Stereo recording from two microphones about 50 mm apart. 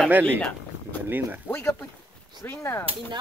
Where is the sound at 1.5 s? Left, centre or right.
Left.